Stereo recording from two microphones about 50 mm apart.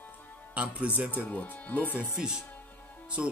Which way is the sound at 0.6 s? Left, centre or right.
Right.